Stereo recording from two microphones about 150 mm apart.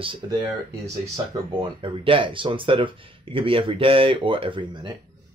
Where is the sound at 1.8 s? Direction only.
35° right (ahead or behind).